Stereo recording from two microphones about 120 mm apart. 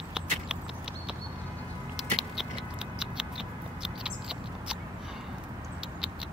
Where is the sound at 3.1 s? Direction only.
5° right (ahead or behind).